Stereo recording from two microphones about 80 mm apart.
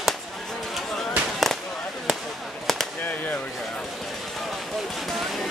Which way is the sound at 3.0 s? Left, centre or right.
Left.